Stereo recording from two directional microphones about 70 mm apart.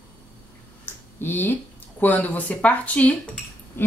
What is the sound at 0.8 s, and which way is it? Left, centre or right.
Finger snapping, left.